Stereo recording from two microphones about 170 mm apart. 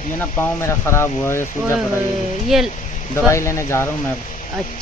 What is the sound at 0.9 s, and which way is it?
Speech, 15° left (ahead or behind).